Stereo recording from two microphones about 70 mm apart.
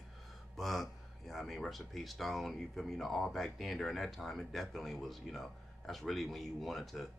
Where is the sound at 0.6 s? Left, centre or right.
Centre.